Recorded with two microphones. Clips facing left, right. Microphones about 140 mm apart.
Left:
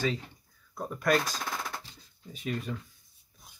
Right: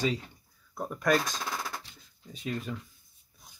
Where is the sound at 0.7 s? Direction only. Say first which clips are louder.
Even; 5° right (ahead or behind).